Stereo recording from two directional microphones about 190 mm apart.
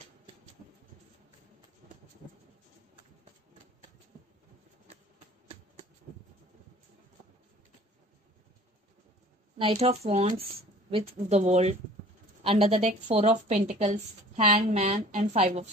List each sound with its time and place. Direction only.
9.6 s a woman's voice: 30° right (ahead or behind)